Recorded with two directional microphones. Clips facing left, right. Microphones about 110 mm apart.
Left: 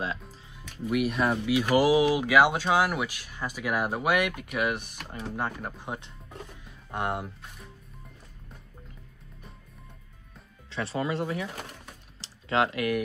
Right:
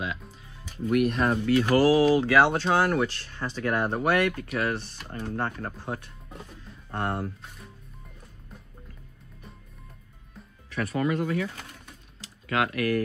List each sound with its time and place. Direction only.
0.9 s speech: 5° left (ahead or behind); by 6.1 s 20° left (ahead or behind)
6.6 s music: 15° left (ahead or behind)
10.7 s speech: 25° left (ahead or behind)
12.2 s typing: 25° left (ahead or behind)